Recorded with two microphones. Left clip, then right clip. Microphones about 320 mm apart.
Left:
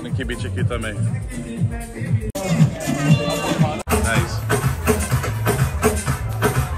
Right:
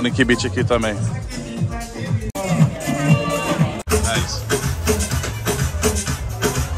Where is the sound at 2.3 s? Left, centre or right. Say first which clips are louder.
Right 1 dB; centre.